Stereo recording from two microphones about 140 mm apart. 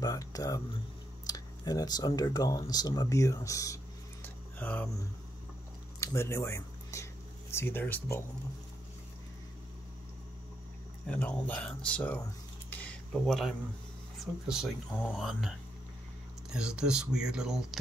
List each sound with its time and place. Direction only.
0.0 s a sound: 25° left (ahead or behind)
1.2 s speech: 25° left (ahead or behind)
4.6 s speech: 10° left (ahead or behind)
5.9 s speech: 20° left (ahead or behind)
11.1 s speech: 10° left (ahead or behind)
12.6 s a sound: 10° left (ahead or behind)
14.1 s speech: centre (ahead or behind)
16.5 s speech: 5° right (ahead or behind)